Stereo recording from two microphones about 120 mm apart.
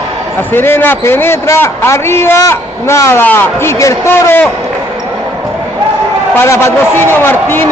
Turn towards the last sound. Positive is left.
turn(degrees=15)  # may be behind; listen again after turning